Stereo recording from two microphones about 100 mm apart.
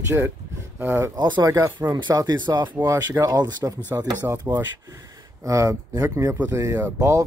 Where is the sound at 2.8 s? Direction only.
30° right (ahead or behind).